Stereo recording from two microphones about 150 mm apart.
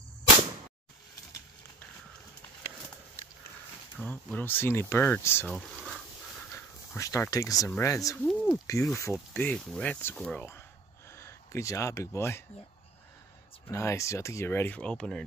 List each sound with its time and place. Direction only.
4.0 s speech: 10° left (ahead or behind)
5.5 s a sound: 5° right (ahead or behind)
6.5 s speech: 20° left (ahead or behind)
8.2 s a sound: 5° left (ahead or behind)
8.6 s speech: 20° left (ahead or behind)
13.7 s speech: 20° left (ahead or behind)